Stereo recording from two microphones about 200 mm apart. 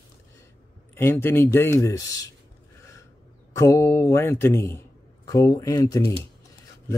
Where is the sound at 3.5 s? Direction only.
15° left (ahead or behind).